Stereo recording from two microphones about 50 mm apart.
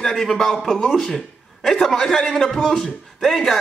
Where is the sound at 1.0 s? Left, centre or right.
Centre.